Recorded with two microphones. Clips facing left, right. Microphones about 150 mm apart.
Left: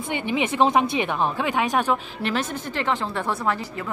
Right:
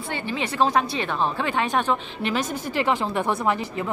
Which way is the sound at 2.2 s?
5° right (ahead or behind).